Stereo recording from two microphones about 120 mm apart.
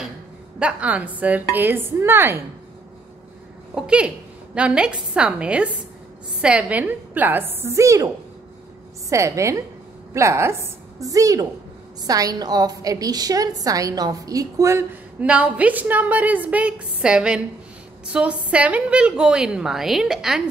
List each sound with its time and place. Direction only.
0.6 s a woman's voice: 10° right (ahead or behind)
3.7 s a woman's voice: 10° right (ahead or behind); by 8.1 s 25° right (ahead or behind)
9.1 s a woman's voice: 25° right (ahead or behind)
15.1 s a woman's voice: 10° right (ahead or behind)